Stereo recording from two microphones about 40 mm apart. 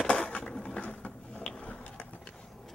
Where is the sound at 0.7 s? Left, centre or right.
Left.